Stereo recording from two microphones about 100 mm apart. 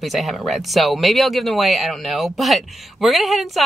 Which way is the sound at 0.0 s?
Centre (ahead or behind).